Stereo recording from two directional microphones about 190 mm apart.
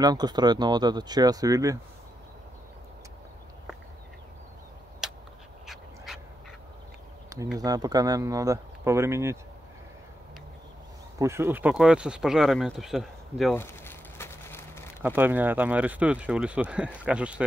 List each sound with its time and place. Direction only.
0.0 s speech: 20° right (ahead or behind)
5.0 s a sound: centre (ahead or behind)
6.1 s duck: centre (ahead or behind)
7.5 s speech: 20° right (ahead or behind)
11.1 s speech: 15° right (ahead or behind)
13.6 s a sound: 15° left (ahead or behind)
15.0 s speech: 10° right (ahead or behind)